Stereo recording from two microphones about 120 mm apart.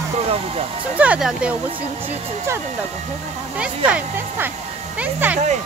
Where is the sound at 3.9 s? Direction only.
15° right (ahead or behind).